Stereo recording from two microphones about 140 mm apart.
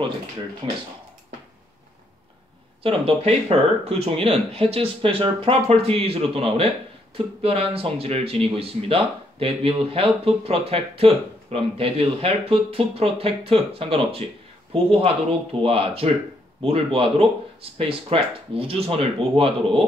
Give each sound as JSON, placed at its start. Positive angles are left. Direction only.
{"t": 0.6, "sound": "speech", "side_deg": -45}
{"t": 2.8, "sound": "speech", "side_deg": -45}